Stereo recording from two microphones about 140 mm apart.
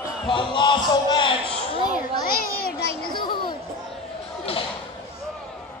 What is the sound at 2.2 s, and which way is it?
Speech, 90° left.